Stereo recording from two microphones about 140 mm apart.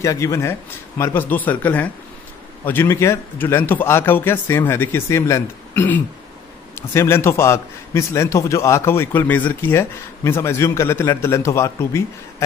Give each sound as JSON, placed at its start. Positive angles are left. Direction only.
{"t": 0.0, "sound": "a man's voice", "side_deg": 20}